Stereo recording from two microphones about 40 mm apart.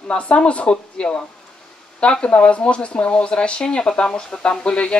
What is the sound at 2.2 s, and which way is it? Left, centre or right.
Speech, left.